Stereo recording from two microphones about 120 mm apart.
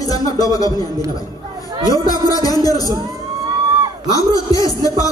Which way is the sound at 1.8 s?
30° left (ahead or behind).